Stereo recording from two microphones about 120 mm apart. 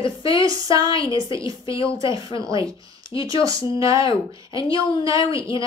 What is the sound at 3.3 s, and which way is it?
Speech, 30° right (ahead or behind).